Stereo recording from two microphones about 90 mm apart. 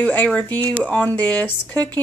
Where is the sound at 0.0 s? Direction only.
15° left (ahead or behind).